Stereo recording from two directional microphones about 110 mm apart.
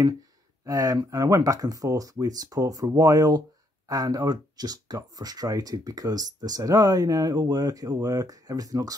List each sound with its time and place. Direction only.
0.7 s speech: 30° right (ahead or behind)